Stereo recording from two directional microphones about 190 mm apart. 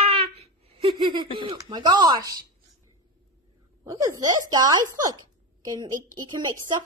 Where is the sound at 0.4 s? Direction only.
30° right (ahead or behind).